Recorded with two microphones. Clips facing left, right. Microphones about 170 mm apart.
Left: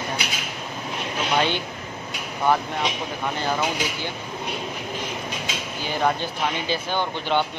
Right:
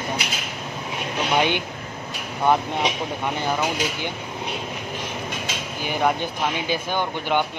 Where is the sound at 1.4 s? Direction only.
15° right (ahead or behind).